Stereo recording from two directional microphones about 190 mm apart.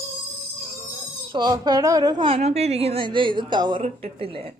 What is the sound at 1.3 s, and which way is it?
A woman's voice, 20° right (ahead or behind).